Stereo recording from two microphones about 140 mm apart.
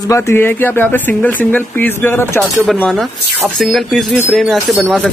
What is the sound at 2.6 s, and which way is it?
Speech, 5° left (ahead or behind).